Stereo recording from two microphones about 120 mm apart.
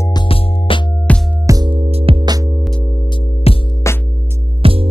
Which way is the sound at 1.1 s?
10° left (ahead or behind).